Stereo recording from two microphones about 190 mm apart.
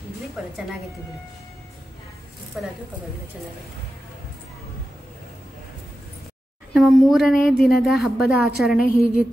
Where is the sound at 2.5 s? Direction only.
5° right (ahead or behind).